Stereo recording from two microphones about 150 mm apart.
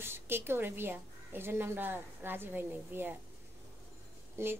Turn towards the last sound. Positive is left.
turn(degrees=-15)  # may be behind; listen again after turning